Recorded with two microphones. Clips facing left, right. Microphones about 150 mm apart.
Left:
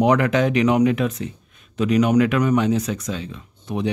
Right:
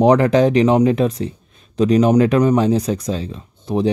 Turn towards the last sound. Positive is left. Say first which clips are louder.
# right 6 dB
turn(degrees=-35)  # may be behind; listen again after turning